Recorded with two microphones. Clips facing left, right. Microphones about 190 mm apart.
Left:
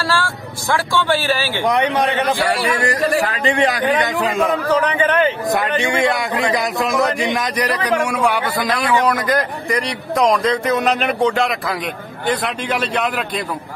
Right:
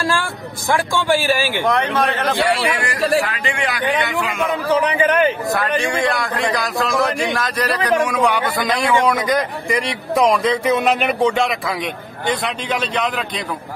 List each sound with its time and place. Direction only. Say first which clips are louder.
0.0 s speech: even; 15° right (ahead or behind)
1.6 s speech: left 1 dB; 20° left (ahead or behind)
2.8 s a man's voice: left 1 dB; 40° left (ahead or behind)
4.7 s speech: right 2 dB; 10° right (ahead or behind)
5.5 s a man's voice: left 1 dB; 20° left (ahead or behind)